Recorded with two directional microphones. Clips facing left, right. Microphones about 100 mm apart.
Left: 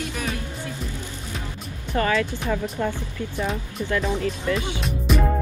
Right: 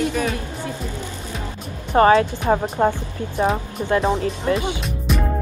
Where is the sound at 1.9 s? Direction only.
35° right (ahead or behind).